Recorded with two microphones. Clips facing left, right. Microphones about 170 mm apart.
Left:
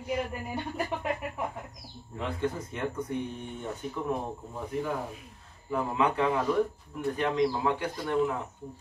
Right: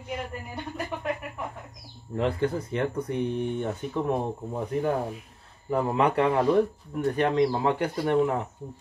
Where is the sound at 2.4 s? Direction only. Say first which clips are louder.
Right 5 dB; 65° right (ahead or behind).